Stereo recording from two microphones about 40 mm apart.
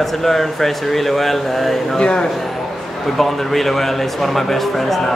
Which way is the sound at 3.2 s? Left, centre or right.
Centre.